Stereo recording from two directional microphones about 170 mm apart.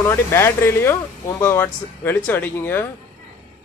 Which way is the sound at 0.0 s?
15° left (ahead or behind).